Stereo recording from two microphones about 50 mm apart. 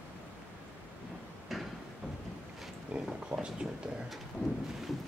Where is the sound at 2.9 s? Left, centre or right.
Right.